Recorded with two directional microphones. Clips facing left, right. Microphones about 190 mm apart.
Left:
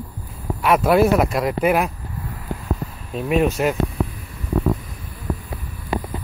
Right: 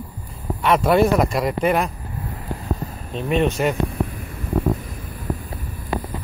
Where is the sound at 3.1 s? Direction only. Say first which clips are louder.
Left 1 dB; 5° left (ahead or behind).